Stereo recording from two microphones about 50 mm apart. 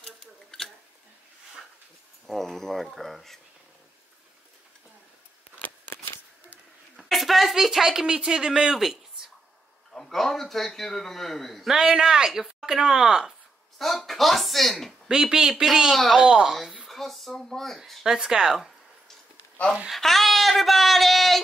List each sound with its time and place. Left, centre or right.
0.0 s scissors: centre
2.2 s a man's voice: centre
7.0 s speech: centre
9.9 s a man's voice: centre
11.6 s speech: centre
13.7 s speech: centre
15.0 s speech: centre
16.2 s speech: centre
16.8 s speech: centre
18.0 s speech: centre
19.9 s a man's voice: centre